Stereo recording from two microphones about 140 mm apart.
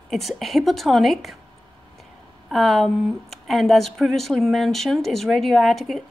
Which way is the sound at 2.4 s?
Centre (ahead or behind).